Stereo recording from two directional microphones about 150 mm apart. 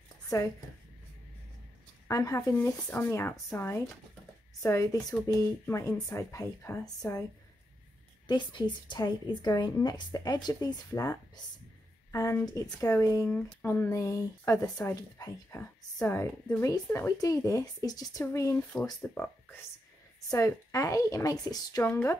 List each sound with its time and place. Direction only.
0.3 s a woman's voice: 20° left (ahead or behind)
2.0 s a woman's voice: 20° left (ahead or behind)
5.2 s a woman's voice: 20° left (ahead or behind)
8.3 s a woman's voice: 30° left (ahead or behind)
12.1 s a woman's voice: 20° left (ahead or behind)
18.7 s speech: 10° left (ahead or behind)
20.2 s a woman's voice: 20° left (ahead or behind)